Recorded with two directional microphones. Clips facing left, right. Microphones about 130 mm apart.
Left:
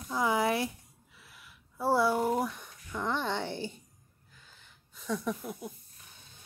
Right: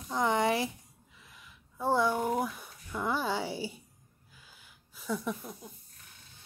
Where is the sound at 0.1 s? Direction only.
5° left (ahead or behind).